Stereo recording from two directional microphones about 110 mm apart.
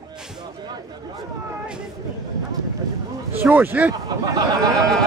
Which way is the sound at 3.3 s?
15° right (ahead or behind).